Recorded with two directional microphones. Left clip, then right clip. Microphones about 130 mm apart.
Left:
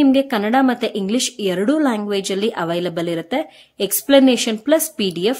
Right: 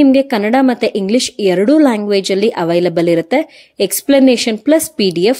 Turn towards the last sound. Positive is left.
turn(degrees=-40)  # may be behind; listen again after turning